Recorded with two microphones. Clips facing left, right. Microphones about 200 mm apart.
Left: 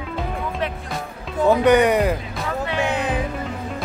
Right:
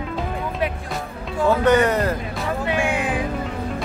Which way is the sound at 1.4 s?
15° left (ahead or behind).